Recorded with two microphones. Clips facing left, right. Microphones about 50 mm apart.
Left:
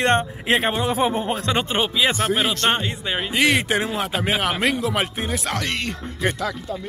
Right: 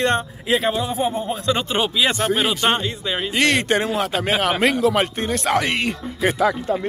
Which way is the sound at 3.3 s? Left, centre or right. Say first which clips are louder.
Right 1 dB; centre.